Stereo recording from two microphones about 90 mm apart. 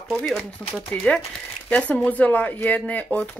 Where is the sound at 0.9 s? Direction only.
15° left (ahead or behind).